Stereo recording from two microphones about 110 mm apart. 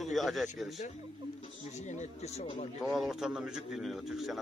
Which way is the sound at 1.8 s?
90° left.